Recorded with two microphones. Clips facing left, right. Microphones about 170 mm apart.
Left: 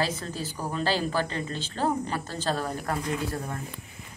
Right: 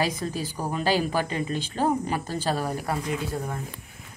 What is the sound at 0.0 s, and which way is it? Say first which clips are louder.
A woman's voice: right 3 dB; 15° right (ahead or behind).